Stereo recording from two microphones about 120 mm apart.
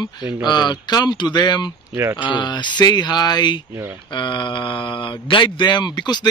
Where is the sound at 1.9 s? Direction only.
20° right (ahead or behind).